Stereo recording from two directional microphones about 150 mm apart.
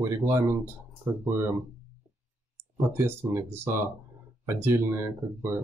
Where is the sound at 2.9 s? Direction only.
15° right (ahead or behind).